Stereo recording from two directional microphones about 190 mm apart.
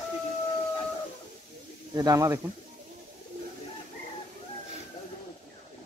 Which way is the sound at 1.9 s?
20° right (ahead or behind).